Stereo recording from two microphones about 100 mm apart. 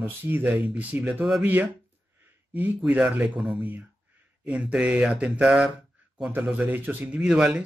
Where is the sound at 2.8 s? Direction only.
10° right (ahead or behind).